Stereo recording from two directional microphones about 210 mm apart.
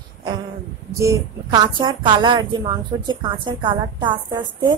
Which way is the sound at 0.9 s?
15° right (ahead or behind).